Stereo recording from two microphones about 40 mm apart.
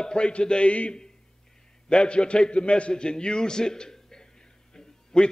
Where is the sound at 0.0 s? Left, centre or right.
Left.